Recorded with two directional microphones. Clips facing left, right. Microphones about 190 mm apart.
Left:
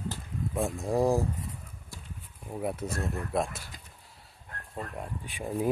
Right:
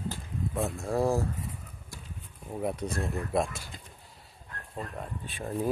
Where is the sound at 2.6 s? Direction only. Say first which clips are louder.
Right 1 dB; 5° left (ahead or behind).